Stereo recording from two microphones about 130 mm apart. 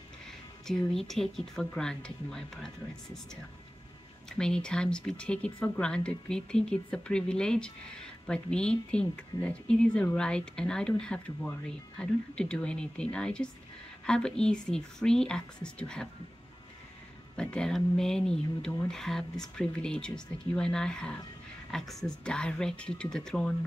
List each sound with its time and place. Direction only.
0.7 s speech: 5° left (ahead or behind)
4.3 s speech: 5° left (ahead or behind)
17.4 s speech: 5° left (ahead or behind)